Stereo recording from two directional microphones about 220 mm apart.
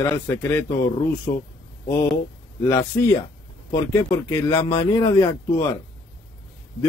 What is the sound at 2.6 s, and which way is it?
A man's voice, 10° left (ahead or behind).